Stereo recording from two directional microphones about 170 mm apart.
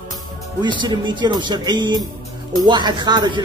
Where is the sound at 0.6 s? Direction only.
25° right (ahead or behind).